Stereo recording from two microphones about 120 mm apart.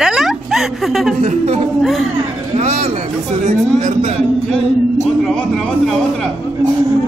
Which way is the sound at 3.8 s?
90° right.